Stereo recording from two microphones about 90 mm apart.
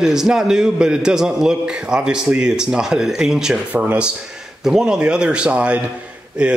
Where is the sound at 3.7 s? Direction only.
15° right (ahead or behind).